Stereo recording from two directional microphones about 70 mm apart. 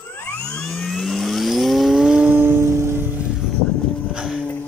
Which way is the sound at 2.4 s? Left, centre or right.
Right.